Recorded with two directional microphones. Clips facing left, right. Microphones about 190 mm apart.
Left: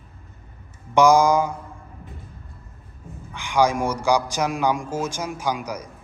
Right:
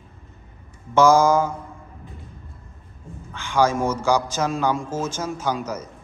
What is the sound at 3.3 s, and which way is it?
A man's voice, 15° left (ahead or behind).